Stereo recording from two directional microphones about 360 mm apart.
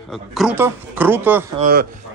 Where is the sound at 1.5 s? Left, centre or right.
Right.